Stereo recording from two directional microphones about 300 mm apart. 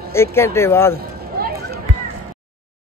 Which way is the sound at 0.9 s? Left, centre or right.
Right.